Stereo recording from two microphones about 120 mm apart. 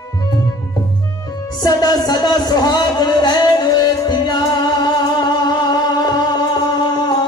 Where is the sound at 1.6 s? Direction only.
35° left (ahead or behind).